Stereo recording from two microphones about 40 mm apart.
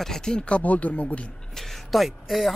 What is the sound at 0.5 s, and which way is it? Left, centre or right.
Speech, left.